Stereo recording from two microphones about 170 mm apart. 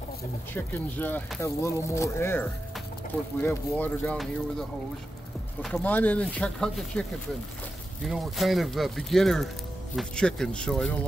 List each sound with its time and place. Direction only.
0.6 s speech: 10° left (ahead or behind)